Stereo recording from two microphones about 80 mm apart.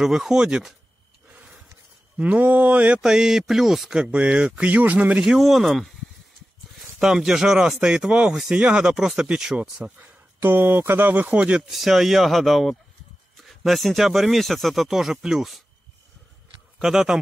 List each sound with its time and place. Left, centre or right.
0.0 s speech: centre
1.3 s a sound: centre
2.1 s speech: centre
3.0 s speech: centre
4.0 s speech: centre
7.0 s speech: centre
9.8 s speech: right
11.3 s speech: centre
16.7 s speech: centre